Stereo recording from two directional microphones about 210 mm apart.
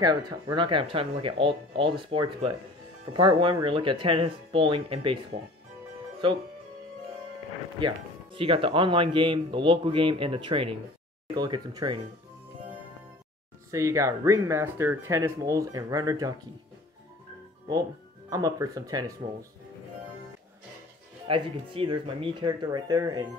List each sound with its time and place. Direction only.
0.0 s speech: 20° right (ahead or behind)
6.2 s speech: 25° right (ahead or behind)
7.8 s speech: 25° right (ahead or behind)
13.7 s speech: 15° right (ahead or behind)
18.3 s speech: 15° right (ahead or behind)
21.3 s speech: 25° right (ahead or behind)